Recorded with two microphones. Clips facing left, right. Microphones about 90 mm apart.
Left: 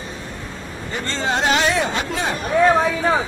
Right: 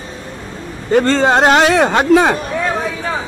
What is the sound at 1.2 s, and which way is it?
Speech, 50° right (ahead or behind).